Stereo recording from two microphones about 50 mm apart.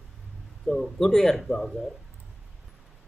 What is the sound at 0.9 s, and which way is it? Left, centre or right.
Speech, centre.